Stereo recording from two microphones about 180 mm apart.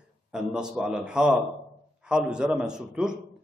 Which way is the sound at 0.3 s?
5° right (ahead or behind).